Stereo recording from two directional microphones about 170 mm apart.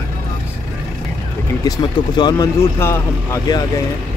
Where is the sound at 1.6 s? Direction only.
25° left (ahead or behind).